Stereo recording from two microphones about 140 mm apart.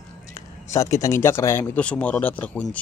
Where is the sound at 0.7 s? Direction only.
20° left (ahead or behind).